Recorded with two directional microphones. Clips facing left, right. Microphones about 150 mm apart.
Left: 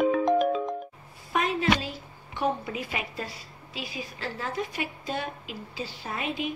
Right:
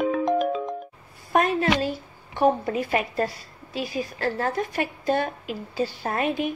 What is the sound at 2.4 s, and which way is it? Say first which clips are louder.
A woman's voice: right 7 dB; 45° right (ahead or behind).